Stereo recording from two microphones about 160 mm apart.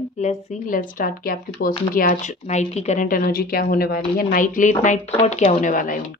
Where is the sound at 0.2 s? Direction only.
50° left (ahead or behind); by 1.7 s 65° left (ahead or behind).